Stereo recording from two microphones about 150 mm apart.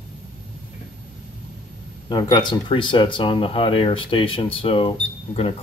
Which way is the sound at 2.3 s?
35° left (ahead or behind).